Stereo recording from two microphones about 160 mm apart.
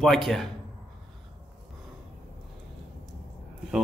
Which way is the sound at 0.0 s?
Centre (ahead or behind).